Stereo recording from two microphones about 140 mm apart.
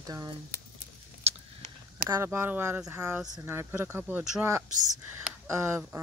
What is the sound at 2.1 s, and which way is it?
Speech, 15° right (ahead or behind).